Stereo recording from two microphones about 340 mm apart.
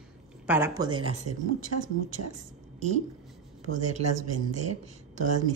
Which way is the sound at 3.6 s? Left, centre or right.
Right.